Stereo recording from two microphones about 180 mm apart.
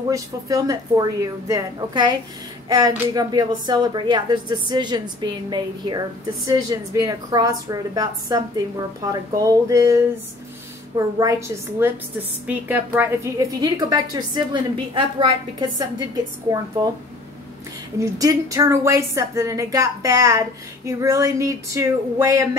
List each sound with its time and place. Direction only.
0.1 s a woman's voice: 20° right (ahead or behind)
3.2 s a woman's voice: 25° right (ahead or behind)
17.9 s a woman's voice: 20° right (ahead or behind)